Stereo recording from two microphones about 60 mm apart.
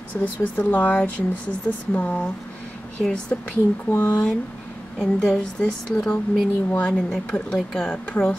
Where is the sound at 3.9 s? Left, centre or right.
Left.